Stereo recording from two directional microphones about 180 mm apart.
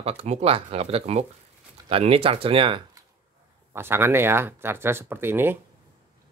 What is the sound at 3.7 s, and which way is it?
Speech, 15° right (ahead or behind).